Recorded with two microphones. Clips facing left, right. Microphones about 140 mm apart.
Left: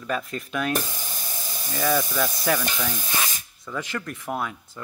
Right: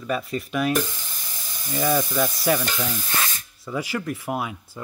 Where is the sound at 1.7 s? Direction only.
15° right (ahead or behind).